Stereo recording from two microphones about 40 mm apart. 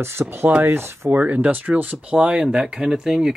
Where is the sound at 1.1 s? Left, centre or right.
Right.